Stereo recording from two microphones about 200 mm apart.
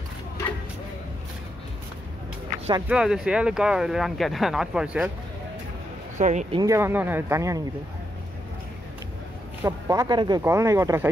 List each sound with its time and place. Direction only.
2.9 s speech: 5° right (ahead or behind)
6.1 s speech: 40° right (ahead or behind)
6.5 s speech: 15° right (ahead or behind)
9.6 s speech: 15° right (ahead or behind)